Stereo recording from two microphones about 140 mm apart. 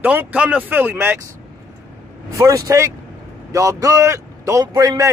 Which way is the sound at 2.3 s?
20° right (ahead or behind).